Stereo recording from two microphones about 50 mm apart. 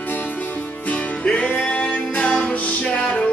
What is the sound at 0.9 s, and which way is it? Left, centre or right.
Music, left.